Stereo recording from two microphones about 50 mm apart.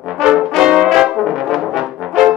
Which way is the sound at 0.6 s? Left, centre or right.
Centre.